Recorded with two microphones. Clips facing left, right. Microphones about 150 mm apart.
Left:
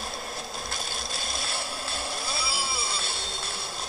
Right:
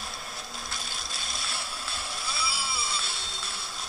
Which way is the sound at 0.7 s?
45° left (ahead or behind).